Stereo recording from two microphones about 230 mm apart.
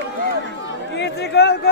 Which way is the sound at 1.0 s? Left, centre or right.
Left.